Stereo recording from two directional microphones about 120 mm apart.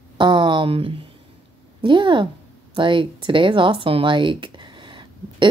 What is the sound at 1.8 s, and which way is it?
Speech, 40° right (ahead or behind).